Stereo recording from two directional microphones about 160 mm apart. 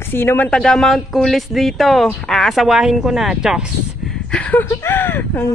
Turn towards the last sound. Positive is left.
turn(degrees=15)  # may be behind; listen again after turning